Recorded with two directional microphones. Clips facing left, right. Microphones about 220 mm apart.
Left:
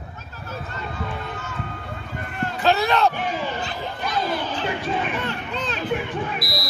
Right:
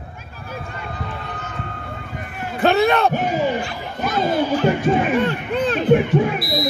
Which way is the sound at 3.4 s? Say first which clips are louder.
Right 6 dB; 15° right (ahead or behind).